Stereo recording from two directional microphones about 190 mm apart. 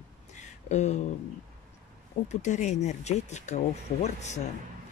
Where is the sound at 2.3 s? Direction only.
40° left (ahead or behind).